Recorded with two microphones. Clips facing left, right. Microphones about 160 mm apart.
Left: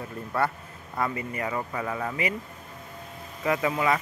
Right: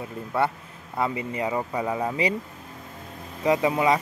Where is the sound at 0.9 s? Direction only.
20° right (ahead or behind).